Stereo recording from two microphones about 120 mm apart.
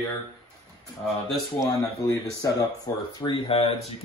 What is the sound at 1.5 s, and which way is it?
Speech, 25° left (ahead or behind).